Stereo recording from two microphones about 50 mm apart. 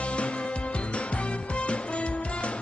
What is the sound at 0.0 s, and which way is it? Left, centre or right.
Music, left.